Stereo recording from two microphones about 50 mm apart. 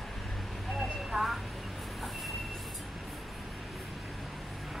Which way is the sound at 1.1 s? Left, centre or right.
Centre.